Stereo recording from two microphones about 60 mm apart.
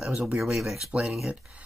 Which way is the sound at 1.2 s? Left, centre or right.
Centre.